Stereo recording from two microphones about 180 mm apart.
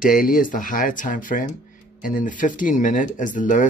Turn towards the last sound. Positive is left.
turn(degrees=45)  # may be behind; listen again after turning